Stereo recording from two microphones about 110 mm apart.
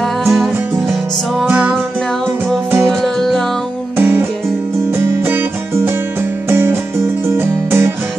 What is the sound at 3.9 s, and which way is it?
Music, 20° right (ahead or behind).